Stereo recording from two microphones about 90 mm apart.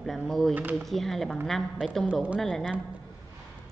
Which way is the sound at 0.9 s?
Centre (ahead or behind).